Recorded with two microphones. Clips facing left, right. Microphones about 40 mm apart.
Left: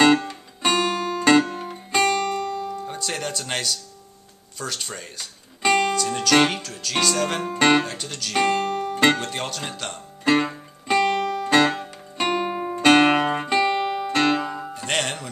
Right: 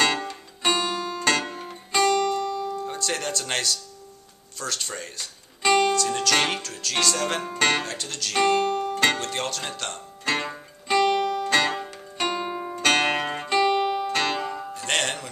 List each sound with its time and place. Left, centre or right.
0.3 s music: centre
2.0 s music: left
2.7 s speech: centre
6.5 s music: centre
7.4 s speech: centre
10.9 s music: centre
12.3 s music: left; by 15.2 s centre